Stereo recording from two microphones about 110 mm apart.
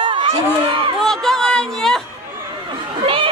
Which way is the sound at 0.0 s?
50° right (ahead or behind).